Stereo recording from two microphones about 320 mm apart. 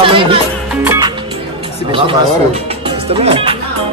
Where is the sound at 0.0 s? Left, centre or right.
Centre.